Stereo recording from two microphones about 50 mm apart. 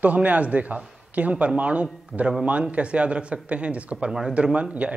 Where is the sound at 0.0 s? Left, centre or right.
Right.